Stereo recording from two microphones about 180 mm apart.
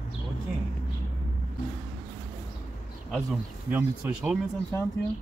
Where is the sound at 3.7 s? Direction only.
5° right (ahead or behind).